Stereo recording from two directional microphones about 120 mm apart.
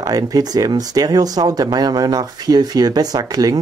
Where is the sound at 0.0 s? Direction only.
30° right (ahead or behind).